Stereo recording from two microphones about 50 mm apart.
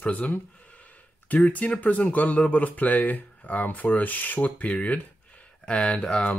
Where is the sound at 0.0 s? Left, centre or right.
Left.